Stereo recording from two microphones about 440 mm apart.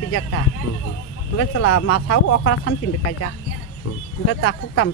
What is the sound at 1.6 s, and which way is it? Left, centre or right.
Speech, left.